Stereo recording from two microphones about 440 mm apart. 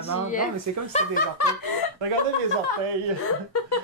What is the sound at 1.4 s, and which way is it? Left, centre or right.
Speech, left.